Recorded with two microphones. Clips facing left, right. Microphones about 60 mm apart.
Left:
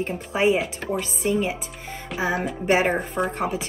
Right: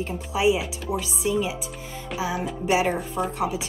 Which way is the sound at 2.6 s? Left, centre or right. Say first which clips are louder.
Left 2 dB; left.